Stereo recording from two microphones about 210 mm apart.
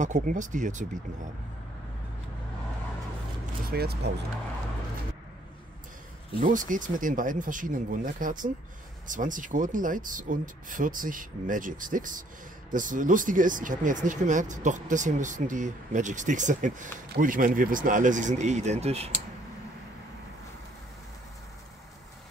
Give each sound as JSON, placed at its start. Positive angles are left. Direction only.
{"t": 0.0, "sound": "speech", "side_deg": -40}
{"t": 3.6, "sound": "speech", "side_deg": -50}
{"t": 6.4, "sound": "speech", "side_deg": -40}